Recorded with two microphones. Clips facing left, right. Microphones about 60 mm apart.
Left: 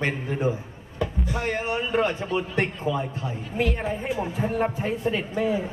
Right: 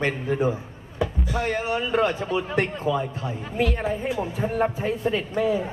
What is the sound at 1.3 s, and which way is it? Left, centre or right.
A man's voice, centre.